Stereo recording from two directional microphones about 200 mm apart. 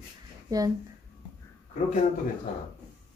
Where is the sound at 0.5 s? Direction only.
20° right (ahead or behind).